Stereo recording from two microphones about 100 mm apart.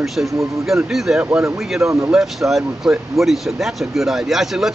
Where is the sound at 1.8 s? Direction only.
25° right (ahead or behind).